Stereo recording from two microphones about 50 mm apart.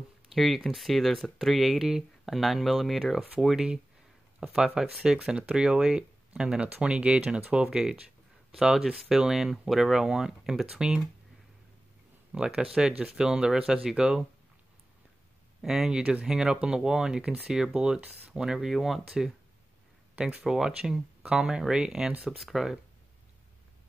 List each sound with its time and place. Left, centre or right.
0.3 s speech: centre
3.3 s speech: centre; by 7.4 s right
7.7 s speech: centre
12.3 s speech: centre
15.6 s speech: centre
16.0 s speech: right
16.3 s speech: centre
20.4 s speech: centre
22.4 s speech: centre